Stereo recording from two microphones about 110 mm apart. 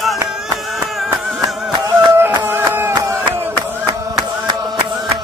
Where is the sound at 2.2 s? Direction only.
20° right (ahead or behind).